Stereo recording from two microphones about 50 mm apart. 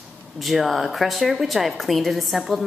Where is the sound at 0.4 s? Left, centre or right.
Centre.